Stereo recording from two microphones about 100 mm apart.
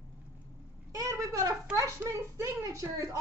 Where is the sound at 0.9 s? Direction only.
35° right (ahead or behind).